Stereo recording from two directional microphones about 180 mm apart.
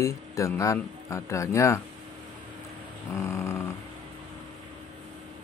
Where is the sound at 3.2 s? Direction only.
15° left (ahead or behind).